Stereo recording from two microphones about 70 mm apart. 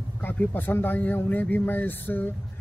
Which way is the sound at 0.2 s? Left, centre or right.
Left.